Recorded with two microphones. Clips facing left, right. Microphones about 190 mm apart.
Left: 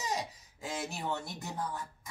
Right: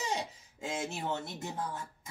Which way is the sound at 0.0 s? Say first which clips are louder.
Right 1 dB; 25° right (ahead or behind).